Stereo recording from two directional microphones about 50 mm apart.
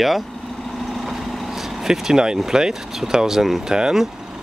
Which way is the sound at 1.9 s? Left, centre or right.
Centre.